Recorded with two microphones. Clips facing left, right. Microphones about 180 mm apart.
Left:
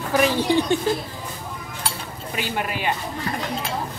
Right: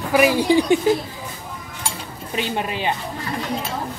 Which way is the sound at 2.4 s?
25° right (ahead or behind).